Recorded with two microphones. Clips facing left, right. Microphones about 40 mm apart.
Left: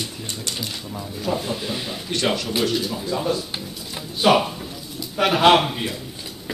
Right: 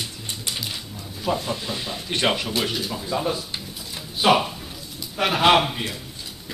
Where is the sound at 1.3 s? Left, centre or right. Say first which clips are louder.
Left 2 dB; centre.